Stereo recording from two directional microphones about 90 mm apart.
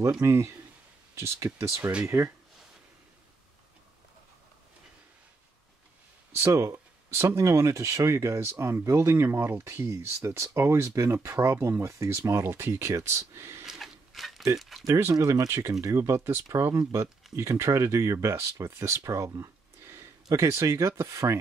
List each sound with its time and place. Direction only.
0.2 s speech: 30° right (ahead or behind)
6.3 s speech: 30° right (ahead or behind)
13.7 s a sound: centre (ahead or behind)
14.6 s speech: centre (ahead or behind)
14.9 s speech: 35° right (ahead or behind)